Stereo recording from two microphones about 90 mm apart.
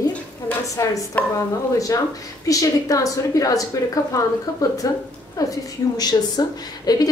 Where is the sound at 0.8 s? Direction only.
35° left (ahead or behind).